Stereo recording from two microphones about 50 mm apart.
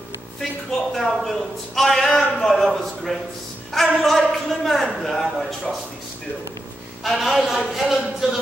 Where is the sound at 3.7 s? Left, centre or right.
Centre.